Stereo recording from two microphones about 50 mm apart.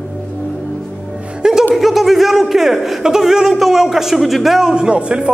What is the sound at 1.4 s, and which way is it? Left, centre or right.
Music, centre.